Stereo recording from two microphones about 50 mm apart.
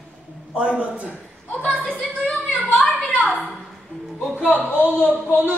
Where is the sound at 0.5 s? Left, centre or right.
Right.